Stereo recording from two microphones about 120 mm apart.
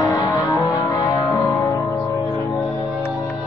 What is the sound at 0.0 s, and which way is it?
Music, 25° left (ahead or behind).